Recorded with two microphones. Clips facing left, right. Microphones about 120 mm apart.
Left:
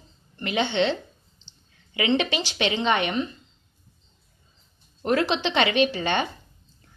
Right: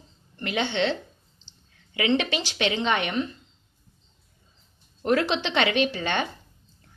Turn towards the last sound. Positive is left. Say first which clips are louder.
# left 2 dB
turn(degrees=5)  # may be behind; listen again after turning